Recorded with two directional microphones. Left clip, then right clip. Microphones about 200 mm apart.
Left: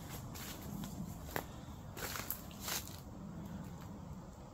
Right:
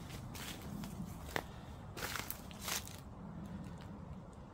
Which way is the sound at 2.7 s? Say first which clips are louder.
Right 1 dB; 15° right (ahead or behind).